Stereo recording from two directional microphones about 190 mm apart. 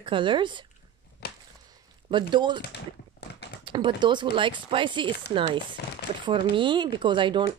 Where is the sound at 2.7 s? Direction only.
60° left (ahead or behind).